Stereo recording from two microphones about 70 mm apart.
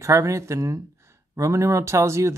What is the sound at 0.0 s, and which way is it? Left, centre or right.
Speech, right.